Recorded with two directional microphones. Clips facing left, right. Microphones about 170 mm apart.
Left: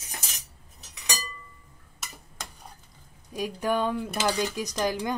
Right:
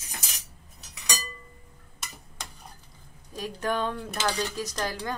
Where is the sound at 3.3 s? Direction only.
10° left (ahead or behind).